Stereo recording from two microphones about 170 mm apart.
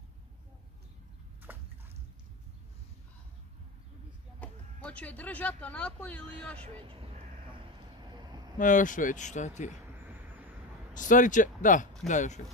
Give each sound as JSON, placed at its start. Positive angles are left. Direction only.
{"t": 1.5, "sound": "a sound", "side_deg": -10}
{"t": 4.4, "sound": "speech", "side_deg": 10}
{"t": 6.6, "sound": "speech", "side_deg": -35}
{"t": 8.0, "sound": "vehicle", "side_deg": -25}
{"t": 8.5, "sound": "speech", "side_deg": 50}
{"t": 9.9, "sound": "a sound", "side_deg": -10}
{"t": 10.9, "sound": "speech", "side_deg": 50}